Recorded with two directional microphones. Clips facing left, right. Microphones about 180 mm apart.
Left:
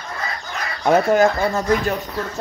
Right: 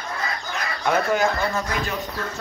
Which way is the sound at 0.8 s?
45° left (ahead or behind).